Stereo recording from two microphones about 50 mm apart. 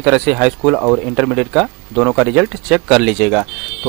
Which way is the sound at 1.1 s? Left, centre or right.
Centre.